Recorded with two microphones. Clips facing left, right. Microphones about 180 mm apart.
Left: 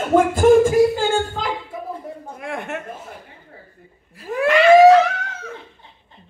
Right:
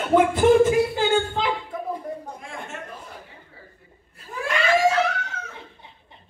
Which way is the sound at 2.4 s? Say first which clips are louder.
Left 8 dB; 65° left (ahead or behind).